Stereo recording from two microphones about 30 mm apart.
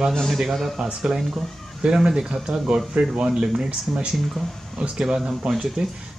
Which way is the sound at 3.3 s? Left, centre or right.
Right.